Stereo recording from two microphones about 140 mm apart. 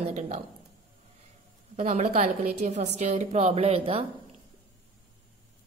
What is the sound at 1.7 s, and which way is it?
A woman's voice, 50° right (ahead or behind).